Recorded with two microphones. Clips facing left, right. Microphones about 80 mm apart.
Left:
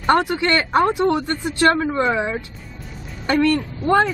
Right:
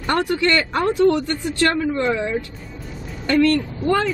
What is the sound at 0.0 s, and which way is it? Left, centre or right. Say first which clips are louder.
A woman's voice: left 2 dB; left.